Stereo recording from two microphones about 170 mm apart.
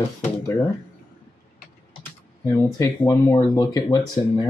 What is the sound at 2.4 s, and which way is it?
Speech, 20° left (ahead or behind).